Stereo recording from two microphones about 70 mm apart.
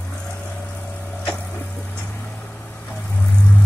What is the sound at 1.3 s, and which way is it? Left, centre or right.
Vehicle, left.